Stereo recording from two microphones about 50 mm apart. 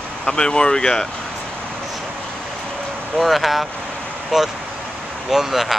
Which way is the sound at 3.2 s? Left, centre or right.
Centre.